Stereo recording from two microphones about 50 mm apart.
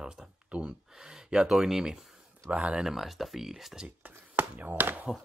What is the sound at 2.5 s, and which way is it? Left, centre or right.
Speech, right.